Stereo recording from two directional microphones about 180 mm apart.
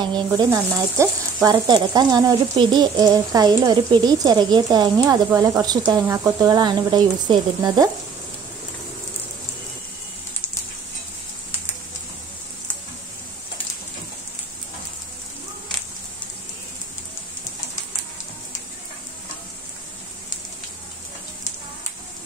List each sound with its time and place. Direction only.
0.0 s sizzle: 25° right (ahead or behind)